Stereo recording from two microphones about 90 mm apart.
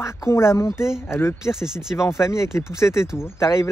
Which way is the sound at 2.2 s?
30° left (ahead or behind).